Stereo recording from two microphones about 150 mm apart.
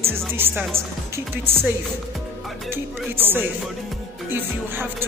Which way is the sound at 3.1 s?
15° right (ahead or behind).